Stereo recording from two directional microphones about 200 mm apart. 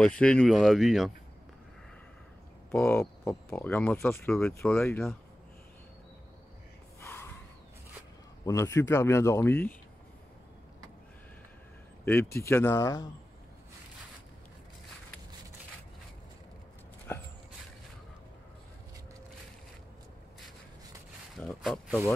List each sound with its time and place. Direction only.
0.0 s speech: 5° left (ahead or behind)
2.7 s speech: 10° left (ahead or behind)
7.0 s a sound: 15° left (ahead or behind)
8.5 s speech: 15° left (ahead or behind)
12.0 s speech: 10° left (ahead or behind)
17.1 s dog: 10° left (ahead or behind)
21.4 s speech: centre (ahead or behind)